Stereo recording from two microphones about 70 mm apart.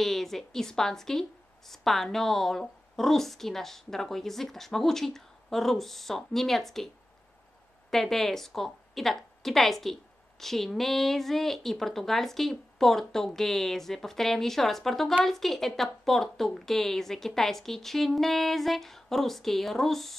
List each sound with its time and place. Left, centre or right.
0.0 s a woman's voice: centre
7.9 s a woman's voice: centre